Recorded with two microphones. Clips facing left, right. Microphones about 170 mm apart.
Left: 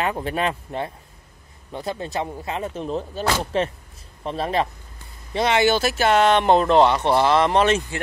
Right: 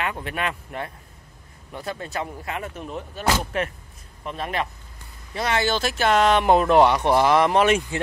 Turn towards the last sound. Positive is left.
turn(degrees=-10)  # may be behind; listen again after turning